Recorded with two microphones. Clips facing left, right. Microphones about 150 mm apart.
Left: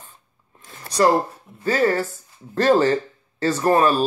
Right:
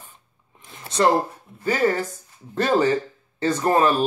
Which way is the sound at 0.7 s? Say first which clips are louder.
Left 2 dB; 25° right (ahead or behind).